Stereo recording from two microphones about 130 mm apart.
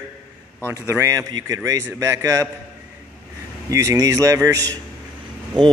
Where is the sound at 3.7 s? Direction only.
25° right (ahead or behind).